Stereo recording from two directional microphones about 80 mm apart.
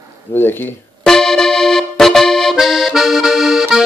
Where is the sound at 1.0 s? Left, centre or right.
Centre.